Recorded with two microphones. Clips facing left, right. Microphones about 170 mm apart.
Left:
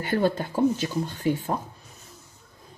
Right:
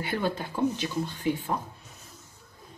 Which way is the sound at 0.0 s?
45° left (ahead or behind).